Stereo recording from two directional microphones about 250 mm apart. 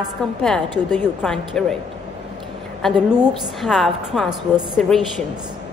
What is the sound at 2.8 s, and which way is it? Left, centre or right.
A woman's voice, centre.